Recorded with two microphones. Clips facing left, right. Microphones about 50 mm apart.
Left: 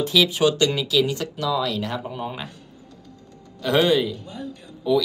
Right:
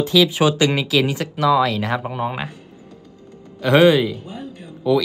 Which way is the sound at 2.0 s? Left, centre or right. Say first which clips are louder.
Right 6 dB; right.